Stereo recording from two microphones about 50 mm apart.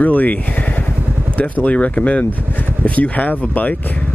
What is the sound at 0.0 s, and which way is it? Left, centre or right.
Speech, left.